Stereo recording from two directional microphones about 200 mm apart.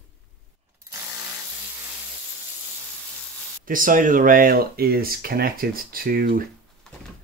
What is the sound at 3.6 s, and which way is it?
Speech, 45° right (ahead or behind).